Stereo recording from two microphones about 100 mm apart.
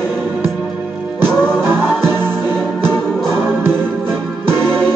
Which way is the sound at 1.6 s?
20° right (ahead or behind).